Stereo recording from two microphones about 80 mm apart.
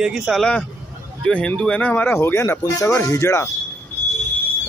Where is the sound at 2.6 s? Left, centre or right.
Left.